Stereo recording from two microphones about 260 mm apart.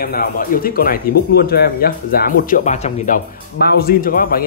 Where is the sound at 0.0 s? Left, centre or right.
Left.